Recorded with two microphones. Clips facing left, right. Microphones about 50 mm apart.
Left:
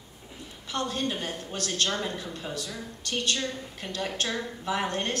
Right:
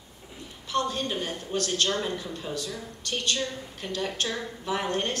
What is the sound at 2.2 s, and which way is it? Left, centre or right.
Speech, left.